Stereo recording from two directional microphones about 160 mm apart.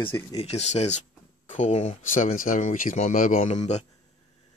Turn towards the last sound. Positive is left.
turn(degrees=45)  # may be behind; listen again after turning